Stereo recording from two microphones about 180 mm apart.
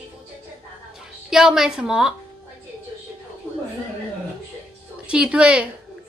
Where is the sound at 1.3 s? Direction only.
5° right (ahead or behind).